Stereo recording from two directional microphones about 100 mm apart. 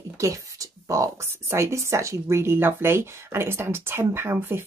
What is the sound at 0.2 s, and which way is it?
Speech, 35° right (ahead or behind).